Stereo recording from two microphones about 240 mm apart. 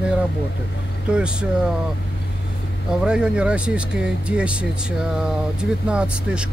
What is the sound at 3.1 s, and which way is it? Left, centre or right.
Speech, centre.